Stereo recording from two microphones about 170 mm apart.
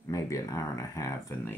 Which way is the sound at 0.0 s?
20° left (ahead or behind).